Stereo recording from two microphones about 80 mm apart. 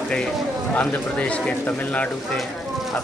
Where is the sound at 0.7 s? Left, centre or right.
Centre.